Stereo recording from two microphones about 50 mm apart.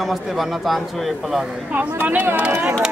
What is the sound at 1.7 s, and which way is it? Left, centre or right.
Speech, right.